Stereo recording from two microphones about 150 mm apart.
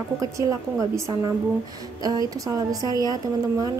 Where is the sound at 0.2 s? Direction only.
20° right (ahead or behind).